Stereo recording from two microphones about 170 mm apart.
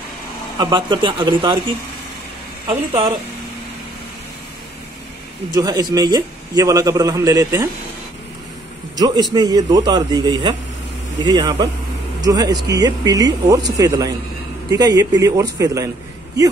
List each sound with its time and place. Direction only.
0.6 s a man's voice: 25° right (ahead or behind)
2.6 s speech: 35° right (ahead or behind)
5.5 s a man's voice: 20° right (ahead or behind)
8.9 s a man's voice: 25° right (ahead or behind)